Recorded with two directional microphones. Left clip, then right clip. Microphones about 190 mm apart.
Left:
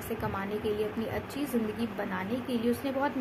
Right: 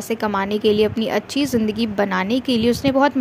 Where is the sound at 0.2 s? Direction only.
50° right (ahead or behind).